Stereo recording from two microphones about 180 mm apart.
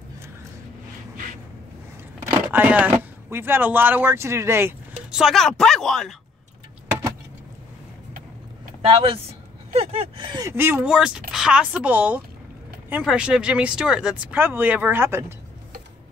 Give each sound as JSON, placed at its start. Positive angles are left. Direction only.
{"t": 2.5, "sound": "speech", "side_deg": -10}
{"t": 5.1, "sound": "speech", "side_deg": 0}
{"t": 8.8, "sound": "speech", "side_deg": -30}
{"t": 10.4, "sound": "speech", "side_deg": -10}